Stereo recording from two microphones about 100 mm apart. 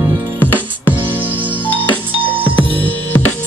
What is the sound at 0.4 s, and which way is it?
Music, 20° left (ahead or behind).